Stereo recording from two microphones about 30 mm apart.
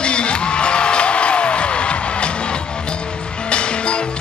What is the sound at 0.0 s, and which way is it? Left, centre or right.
Music, left.